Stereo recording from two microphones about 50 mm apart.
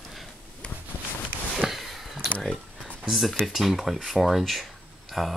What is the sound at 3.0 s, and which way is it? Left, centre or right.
Speech, centre.